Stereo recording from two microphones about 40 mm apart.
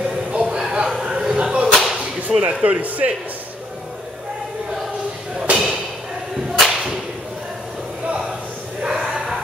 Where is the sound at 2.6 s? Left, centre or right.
Right.